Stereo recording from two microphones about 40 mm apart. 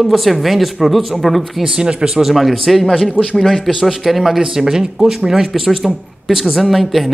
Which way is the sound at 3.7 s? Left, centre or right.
Centre.